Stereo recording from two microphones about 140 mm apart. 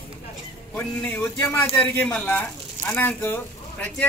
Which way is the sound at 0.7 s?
10° left (ahead or behind).